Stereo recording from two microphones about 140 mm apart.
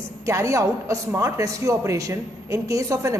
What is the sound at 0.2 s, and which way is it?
A man's voice, 20° right (ahead or behind).